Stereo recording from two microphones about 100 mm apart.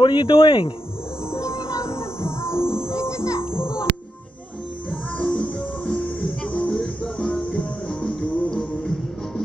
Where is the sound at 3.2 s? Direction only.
25° left (ahead or behind).